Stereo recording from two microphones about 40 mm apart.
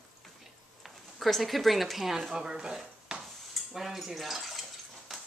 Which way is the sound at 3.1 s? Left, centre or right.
Right.